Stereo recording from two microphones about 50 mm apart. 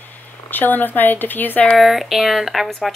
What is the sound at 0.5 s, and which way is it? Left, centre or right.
Speech, left.